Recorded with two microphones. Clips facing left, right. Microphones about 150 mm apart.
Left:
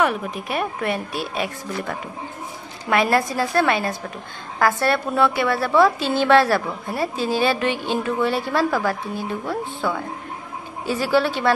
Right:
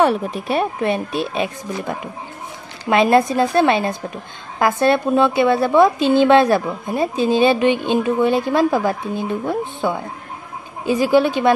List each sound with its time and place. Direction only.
0.0 s a woman's voice: 30° right (ahead or behind)